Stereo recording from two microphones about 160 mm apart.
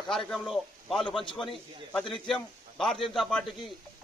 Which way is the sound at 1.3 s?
Centre (ahead or behind).